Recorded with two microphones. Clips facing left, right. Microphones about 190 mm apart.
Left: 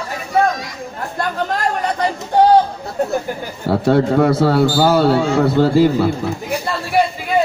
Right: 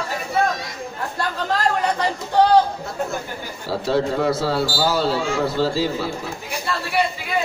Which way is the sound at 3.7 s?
60° left (ahead or behind).